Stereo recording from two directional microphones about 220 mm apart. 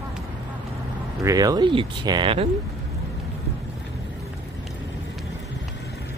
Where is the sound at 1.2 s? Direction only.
15° right (ahead or behind).